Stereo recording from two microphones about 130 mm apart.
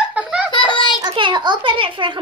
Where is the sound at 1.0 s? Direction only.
35° right (ahead or behind).